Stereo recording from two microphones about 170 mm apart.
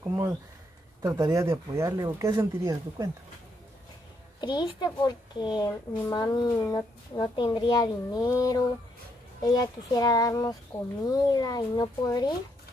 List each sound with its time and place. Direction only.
0.0 s speech: 20° right (ahead or behind)
4.4 s a child's voice: 25° left (ahead or behind)